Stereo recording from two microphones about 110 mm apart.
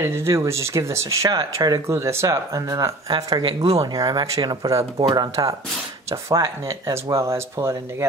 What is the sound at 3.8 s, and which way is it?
Speech, 35° right (ahead or behind).